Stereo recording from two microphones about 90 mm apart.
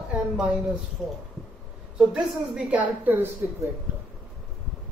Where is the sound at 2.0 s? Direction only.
10° right (ahead or behind).